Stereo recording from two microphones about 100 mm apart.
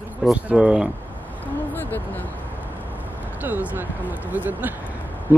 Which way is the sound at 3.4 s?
15° right (ahead or behind).